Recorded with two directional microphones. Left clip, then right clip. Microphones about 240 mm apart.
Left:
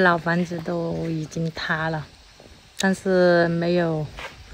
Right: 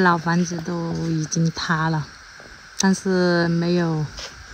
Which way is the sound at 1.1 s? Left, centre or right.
Centre.